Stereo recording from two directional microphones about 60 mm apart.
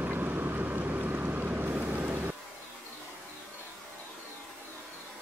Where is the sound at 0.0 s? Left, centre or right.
Right.